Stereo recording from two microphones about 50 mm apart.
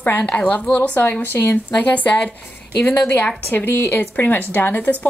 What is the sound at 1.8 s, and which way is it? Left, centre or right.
Speech, left.